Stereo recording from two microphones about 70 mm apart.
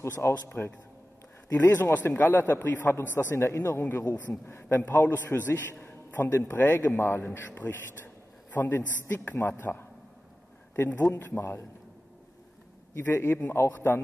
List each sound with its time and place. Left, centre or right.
0.0 s a man's voice: left
4.0 s a man's voice: left
4.5 s a man's voice: left
13.1 s a man's voice: left